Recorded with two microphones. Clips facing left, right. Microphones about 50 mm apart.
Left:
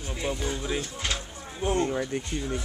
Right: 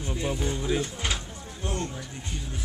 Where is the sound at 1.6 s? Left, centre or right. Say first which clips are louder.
Left 7 dB; left.